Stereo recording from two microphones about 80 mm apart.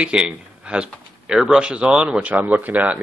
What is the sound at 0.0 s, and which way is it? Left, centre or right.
Speech, centre.